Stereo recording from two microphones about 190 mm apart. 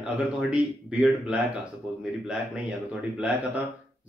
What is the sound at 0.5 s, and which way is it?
Speech, 5° right (ahead or behind).